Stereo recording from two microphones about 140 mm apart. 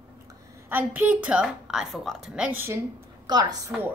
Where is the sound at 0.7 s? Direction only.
15° right (ahead or behind).